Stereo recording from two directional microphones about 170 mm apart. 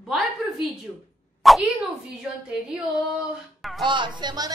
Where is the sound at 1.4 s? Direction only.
Centre (ahead or behind).